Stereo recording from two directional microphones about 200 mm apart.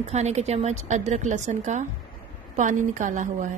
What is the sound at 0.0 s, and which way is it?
A woman's voice, 35° right (ahead or behind).